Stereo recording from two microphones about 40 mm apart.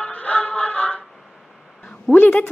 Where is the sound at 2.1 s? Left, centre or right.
Left.